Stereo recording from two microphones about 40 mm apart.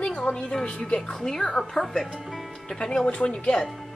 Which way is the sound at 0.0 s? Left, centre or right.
Left.